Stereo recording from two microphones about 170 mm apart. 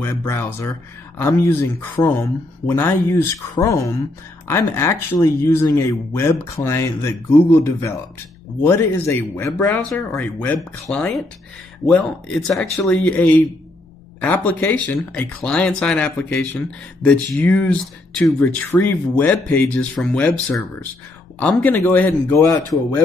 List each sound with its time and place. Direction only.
0.0 s speech: 15° left (ahead or behind)
12.7 s speech: 15° left (ahead or behind)
21.4 s speech: 10° left (ahead or behind)